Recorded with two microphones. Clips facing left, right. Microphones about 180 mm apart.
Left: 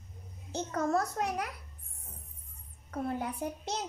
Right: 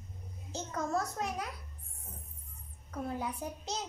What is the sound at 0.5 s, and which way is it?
Speech, 60° left (ahead or behind).